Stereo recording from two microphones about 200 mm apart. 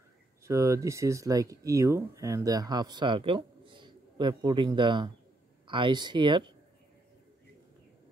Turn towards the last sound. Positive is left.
turn(degrees=-25)  # may be behind; listen again after turning